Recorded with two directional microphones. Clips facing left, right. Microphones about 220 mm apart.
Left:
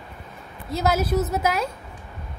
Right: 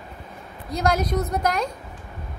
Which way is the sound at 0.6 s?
5° left (ahead or behind).